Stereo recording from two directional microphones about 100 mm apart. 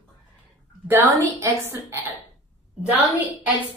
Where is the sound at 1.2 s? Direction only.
25° right (ahead or behind).